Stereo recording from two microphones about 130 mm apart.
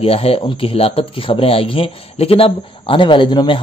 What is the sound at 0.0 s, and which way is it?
Speech, 45° left (ahead or behind).